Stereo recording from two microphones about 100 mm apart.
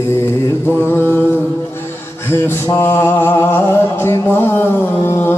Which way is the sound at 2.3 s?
25° left (ahead or behind).